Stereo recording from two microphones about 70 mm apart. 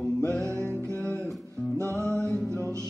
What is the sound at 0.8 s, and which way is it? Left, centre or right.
Music, right.